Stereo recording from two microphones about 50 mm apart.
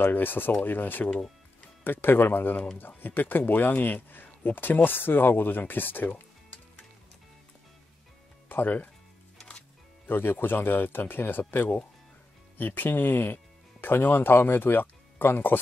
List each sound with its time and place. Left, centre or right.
0.0 s speech: left
8.5 s speech: left
10.0 s speech: left